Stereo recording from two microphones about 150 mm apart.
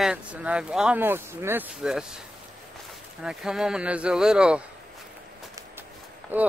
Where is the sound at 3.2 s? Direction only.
5° right (ahead or behind).